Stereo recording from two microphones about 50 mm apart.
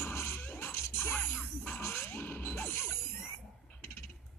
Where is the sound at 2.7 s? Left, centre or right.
Left.